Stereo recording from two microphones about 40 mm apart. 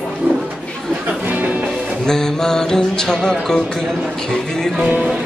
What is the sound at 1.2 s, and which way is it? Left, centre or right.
Music, right.